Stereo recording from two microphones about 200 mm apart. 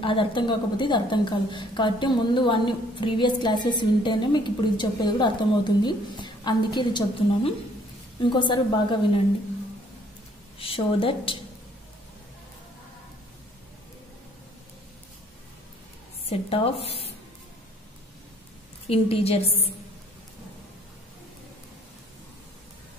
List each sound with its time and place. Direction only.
0.0 s a woman's voice: 25° left (ahead or behind)
10.6 s a woman's voice: 25° left (ahead or behind)
16.3 s a woman's voice: 30° left (ahead or behind)
18.9 s a woman's voice: 30° left (ahead or behind)